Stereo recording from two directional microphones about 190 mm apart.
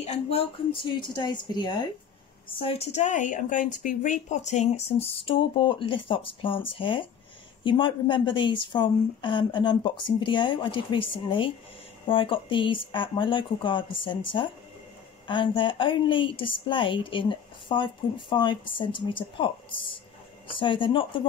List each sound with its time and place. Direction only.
0.0 s a woman's voice: 35° left (ahead or behind)